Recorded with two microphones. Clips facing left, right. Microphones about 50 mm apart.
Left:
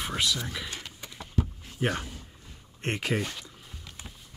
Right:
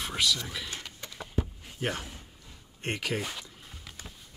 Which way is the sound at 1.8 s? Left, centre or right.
Left.